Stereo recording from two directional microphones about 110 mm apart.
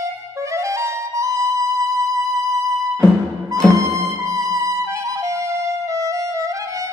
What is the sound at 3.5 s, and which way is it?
Music, 30° right (ahead or behind).